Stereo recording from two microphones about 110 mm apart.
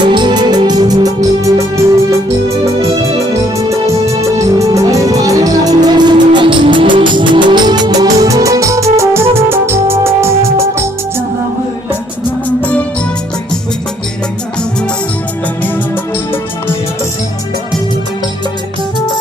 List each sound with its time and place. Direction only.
0.0 s music: 45° right (ahead or behind); by 3.1 s 30° right (ahead or behind)
4.2 s music: 30° right (ahead or behind)
12.4 s music: 15° left (ahead or behind)